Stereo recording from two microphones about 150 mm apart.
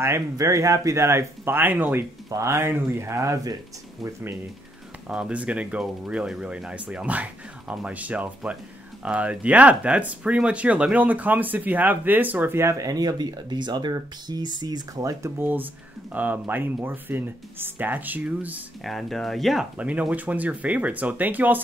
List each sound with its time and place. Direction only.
0.0 s speech: 20° right (ahead or behind)
18.9 s speech: centre (ahead or behind)